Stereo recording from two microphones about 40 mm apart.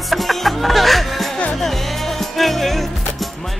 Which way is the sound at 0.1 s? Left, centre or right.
Centre.